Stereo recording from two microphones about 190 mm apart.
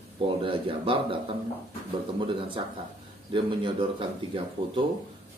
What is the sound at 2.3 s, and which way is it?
Speech, 25° right (ahead or behind).